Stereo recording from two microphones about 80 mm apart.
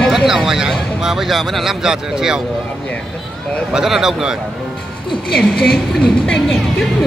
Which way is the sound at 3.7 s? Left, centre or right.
Centre.